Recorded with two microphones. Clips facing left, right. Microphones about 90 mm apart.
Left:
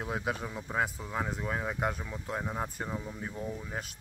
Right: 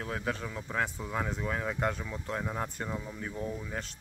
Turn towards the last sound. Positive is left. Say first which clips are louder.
# right 1 dB
turn(degrees=10)  # may be behind; listen again after turning